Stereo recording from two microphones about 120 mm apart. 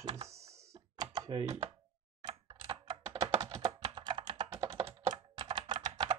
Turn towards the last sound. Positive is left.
turn(degrees=-35)  # may be behind; listen again after turning